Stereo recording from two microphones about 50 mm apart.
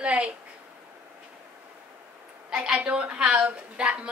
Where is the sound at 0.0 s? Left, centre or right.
Right.